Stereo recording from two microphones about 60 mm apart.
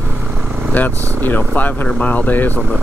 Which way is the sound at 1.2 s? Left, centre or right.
Left.